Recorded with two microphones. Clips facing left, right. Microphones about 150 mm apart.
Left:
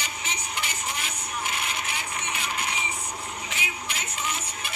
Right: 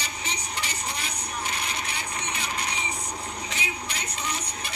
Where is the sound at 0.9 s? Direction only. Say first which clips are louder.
Even; 35° right (ahead or behind).